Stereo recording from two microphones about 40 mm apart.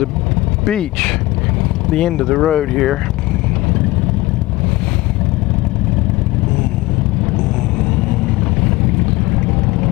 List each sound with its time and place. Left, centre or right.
0.7 s speech: centre